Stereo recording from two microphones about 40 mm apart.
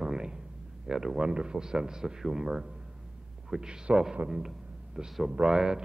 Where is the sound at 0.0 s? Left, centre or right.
Centre.